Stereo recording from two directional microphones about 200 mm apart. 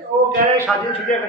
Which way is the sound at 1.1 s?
40° left (ahead or behind).